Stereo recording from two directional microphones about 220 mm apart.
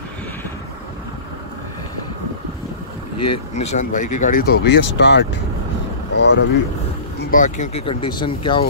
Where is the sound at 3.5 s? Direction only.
35° left (ahead or behind); by 6.4 s 50° left (ahead or behind).